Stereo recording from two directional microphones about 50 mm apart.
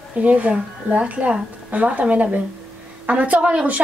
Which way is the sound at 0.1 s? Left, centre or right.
Right.